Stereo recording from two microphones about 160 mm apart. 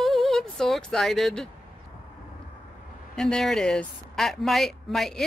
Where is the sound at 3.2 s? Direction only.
5° left (ahead or behind).